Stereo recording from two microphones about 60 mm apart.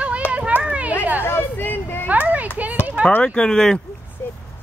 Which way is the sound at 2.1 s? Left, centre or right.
Right.